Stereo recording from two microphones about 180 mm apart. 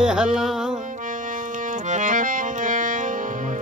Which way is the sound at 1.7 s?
45° right (ahead or behind).